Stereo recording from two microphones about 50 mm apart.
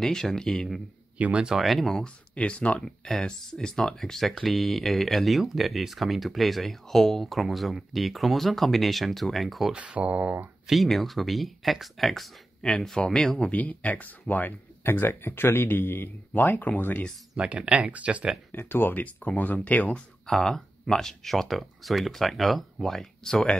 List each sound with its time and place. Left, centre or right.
0.0 s speech: centre
1.1 s speech: right
1.6 s speech: centre
2.3 s speech: left
2.8 s speech: centre
9.7 s speech: right
10.7 s speech: centre
12.6 s speech: centre
13.5 s speech: left
14.8 s speech: left
17.6 s speech: right
18.5 s speech: left
19.0 s speech: left
20.2 s speech: centre